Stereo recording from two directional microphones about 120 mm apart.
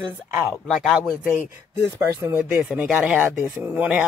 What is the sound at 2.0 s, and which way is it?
Speech, 20° right (ahead or behind).